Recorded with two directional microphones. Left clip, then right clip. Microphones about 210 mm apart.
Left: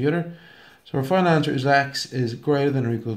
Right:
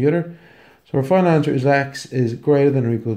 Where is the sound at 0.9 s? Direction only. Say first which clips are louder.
Right 4 dB; 20° right (ahead or behind).